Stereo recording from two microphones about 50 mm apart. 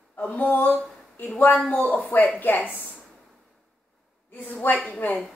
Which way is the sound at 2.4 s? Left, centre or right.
Left.